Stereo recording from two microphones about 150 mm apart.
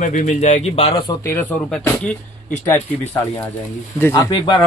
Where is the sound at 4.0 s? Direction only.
20° left (ahead or behind).